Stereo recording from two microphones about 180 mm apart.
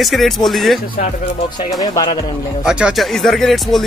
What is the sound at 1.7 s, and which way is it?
Speech, 25° left (ahead or behind).